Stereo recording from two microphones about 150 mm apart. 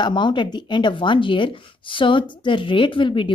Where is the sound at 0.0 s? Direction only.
30° left (ahead or behind).